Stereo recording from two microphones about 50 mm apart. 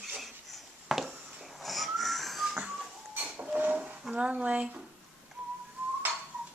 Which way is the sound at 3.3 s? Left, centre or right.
Right.